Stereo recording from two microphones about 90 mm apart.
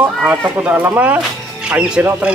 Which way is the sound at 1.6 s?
10° right (ahead or behind).